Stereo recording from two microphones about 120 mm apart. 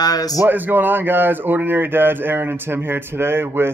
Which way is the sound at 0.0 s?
30° left (ahead or behind).